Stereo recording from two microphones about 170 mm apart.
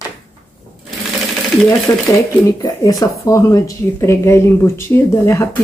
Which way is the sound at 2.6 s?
20° left (ahead or behind).